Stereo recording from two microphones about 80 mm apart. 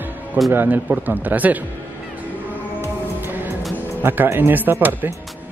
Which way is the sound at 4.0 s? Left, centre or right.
Right.